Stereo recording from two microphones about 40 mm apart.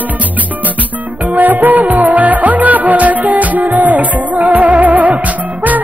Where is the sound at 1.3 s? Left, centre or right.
Right.